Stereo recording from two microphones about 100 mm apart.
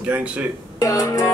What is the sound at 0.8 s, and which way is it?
Music, 40° left (ahead or behind).